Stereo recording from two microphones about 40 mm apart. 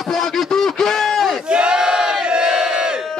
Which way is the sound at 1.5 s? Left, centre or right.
Right.